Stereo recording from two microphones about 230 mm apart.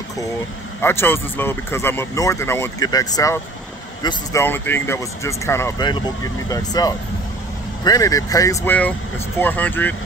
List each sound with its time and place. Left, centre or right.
0.7 s speech: centre